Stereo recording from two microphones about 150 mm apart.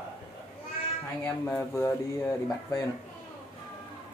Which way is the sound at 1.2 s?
15° left (ahead or behind).